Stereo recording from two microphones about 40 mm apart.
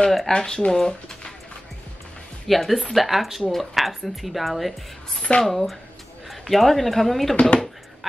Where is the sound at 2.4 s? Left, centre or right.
Centre.